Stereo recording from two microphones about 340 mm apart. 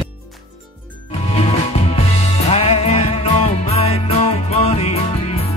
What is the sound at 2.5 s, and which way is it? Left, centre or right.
Music, centre.